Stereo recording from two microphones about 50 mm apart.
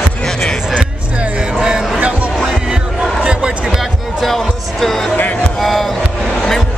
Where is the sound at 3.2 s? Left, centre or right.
Centre.